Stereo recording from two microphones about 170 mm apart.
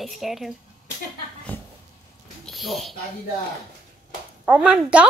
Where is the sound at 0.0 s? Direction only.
Centre (ahead or behind).